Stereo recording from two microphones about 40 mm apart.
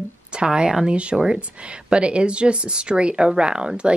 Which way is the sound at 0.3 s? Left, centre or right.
Right.